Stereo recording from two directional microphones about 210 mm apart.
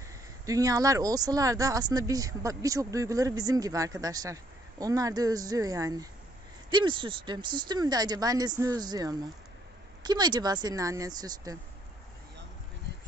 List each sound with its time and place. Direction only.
0.5 s speech: 15° right (ahead or behind)